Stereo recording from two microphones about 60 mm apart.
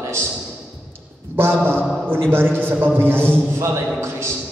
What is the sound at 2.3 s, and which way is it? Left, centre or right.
A man's voice, right.